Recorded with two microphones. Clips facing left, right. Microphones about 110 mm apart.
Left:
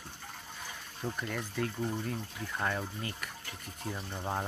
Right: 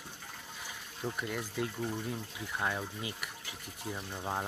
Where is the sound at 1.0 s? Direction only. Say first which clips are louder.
Even; 10° right (ahead or behind).